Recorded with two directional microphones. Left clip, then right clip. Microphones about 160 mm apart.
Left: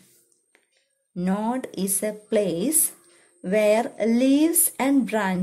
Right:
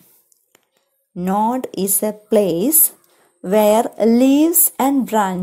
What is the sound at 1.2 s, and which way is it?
A woman's voice, 20° right (ahead or behind).